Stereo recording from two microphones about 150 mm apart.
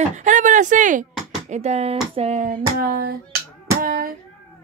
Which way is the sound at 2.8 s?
90° right.